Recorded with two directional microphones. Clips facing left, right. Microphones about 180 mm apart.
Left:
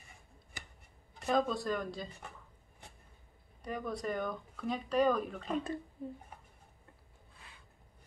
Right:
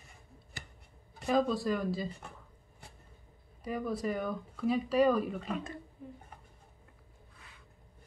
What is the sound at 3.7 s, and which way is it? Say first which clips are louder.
Speech: right 3 dB; 5° right (ahead or behind).